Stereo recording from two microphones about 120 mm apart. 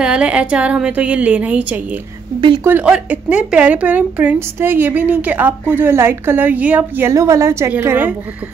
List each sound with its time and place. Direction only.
0.0 s a woman's voice: 10° right (ahead or behind)
7.1 s a woman's voice: 25° right (ahead or behind)